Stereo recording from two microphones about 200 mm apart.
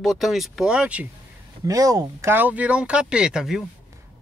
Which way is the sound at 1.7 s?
15° right (ahead or behind).